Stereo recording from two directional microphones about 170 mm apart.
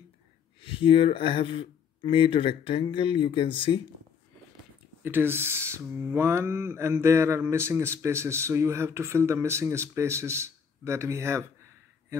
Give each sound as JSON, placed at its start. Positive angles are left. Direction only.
{"t": 0.6, "sound": "speech", "side_deg": 30}
{"t": 5.0, "sound": "speech", "side_deg": -10}